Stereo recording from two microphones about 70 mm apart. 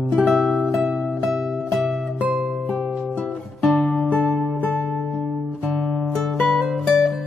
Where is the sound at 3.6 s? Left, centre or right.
Centre.